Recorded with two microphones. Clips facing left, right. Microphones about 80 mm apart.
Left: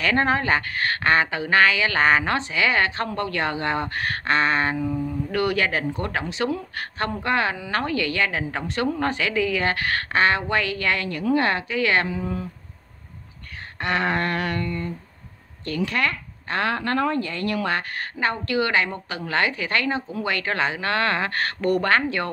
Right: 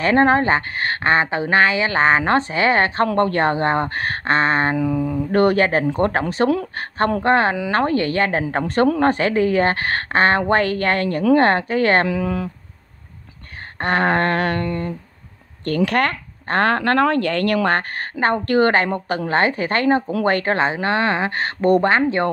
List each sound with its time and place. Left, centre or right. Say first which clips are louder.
0.0 s a woman's voice: right 6 dB; right
4.7 s mantra: right 6 dB; right
5.3 s a woman's voice: right 7 dB; right
12.1 s speech: right 6 dB; right
13.7 s speech: right 5 dB; right
15.6 s a woman's voice: right 6 dB; right